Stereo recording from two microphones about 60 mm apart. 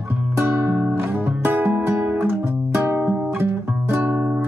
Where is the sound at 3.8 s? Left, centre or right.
Right.